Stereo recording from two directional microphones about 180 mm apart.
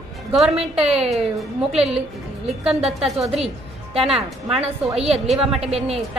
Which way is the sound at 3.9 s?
30° right (ahead or behind).